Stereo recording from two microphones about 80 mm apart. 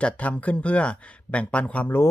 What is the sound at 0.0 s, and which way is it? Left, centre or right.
Speech, centre.